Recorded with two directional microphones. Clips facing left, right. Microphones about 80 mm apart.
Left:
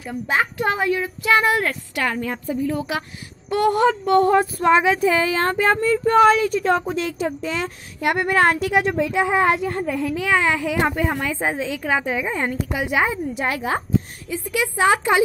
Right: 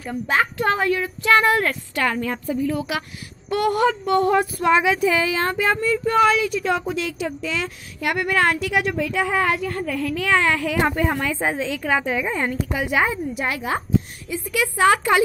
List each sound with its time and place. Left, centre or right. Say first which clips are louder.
0.3 s speech: right 1 dB; centre
3.4 s female singing: left 2 dB; left
6.9 s a woman's voice: left 2 dB; left; by 11.2 s centre
11.2 s a woman's voice: even; left
13.3 s female singing: left 1 dB; left
14.5 s a woman's voice: right 1 dB; left